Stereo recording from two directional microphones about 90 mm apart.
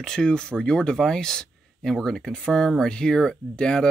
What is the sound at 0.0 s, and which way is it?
Speech, 10° left (ahead or behind).